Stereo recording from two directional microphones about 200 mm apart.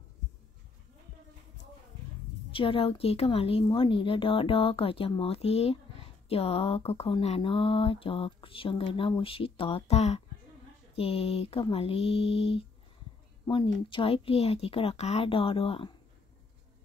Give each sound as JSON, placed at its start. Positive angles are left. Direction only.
{"t": 2.5, "sound": "speech", "side_deg": 25}
{"t": 13.5, "sound": "speech", "side_deg": 25}